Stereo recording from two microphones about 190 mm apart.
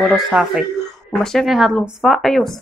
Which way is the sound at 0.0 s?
Centre (ahead or behind).